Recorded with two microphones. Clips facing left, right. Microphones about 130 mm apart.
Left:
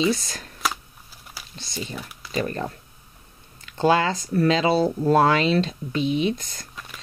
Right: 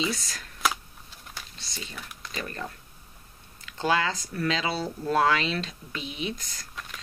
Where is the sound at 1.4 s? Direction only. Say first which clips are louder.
Even; 5° left (ahead or behind).